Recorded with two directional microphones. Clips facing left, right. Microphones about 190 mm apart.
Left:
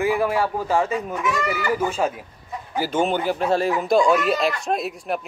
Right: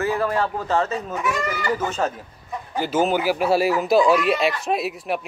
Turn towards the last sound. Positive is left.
turn(degrees=0)  # may be behind; listen again after turning